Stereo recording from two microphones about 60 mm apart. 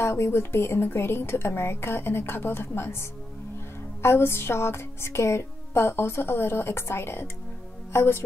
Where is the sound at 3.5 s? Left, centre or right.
Left.